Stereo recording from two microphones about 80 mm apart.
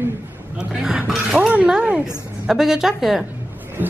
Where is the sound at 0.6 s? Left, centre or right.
Centre.